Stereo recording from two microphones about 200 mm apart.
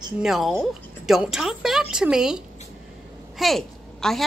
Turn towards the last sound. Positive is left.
turn(degrees=0)  # may be behind; listen again after turning